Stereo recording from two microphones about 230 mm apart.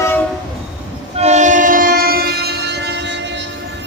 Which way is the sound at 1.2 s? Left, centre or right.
Right.